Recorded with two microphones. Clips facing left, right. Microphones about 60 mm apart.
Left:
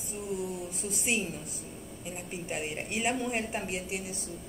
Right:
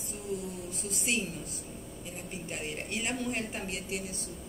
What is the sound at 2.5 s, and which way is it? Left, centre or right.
A woman's voice, centre.